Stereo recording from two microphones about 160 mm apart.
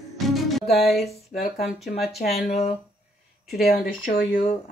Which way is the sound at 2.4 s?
40° left (ahead or behind).